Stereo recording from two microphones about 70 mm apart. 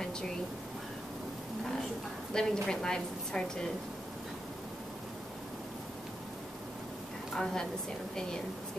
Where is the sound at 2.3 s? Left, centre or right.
Centre.